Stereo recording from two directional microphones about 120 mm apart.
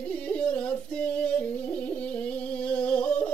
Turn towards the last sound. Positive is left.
turn(degrees=10)  # may be behind; listen again after turning